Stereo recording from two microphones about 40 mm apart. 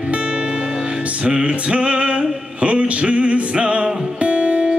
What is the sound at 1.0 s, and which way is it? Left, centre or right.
Music, right.